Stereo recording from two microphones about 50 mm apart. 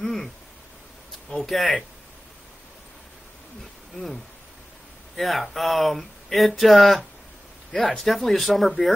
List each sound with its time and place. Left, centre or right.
0.0 s a sound: centre
1.3 s speech: centre
3.9 s speech: centre